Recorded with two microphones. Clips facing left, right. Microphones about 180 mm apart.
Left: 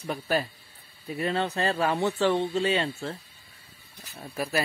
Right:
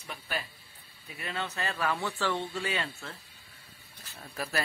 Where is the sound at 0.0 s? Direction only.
45° left (ahead or behind).